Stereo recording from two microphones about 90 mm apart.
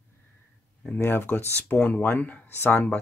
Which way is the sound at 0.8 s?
20° left (ahead or behind).